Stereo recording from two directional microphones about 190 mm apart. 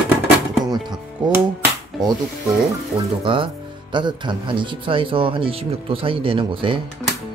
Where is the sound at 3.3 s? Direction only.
25° right (ahead or behind).